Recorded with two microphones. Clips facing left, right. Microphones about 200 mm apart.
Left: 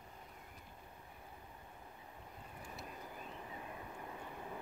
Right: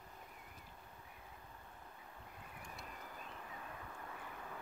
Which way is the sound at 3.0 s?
15° left (ahead or behind).